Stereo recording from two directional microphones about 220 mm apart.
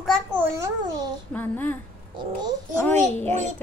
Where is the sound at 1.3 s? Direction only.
10° left (ahead or behind).